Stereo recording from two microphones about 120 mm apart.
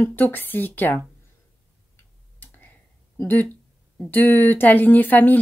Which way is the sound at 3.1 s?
15° left (ahead or behind).